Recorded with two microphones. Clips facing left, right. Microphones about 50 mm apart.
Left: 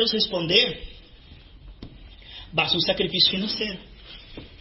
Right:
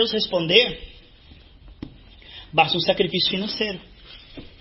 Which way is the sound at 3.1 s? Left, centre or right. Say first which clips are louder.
Right 1 dB; right.